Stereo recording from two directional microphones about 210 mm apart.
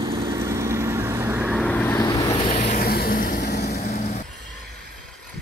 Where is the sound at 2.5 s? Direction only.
45° left (ahead or behind).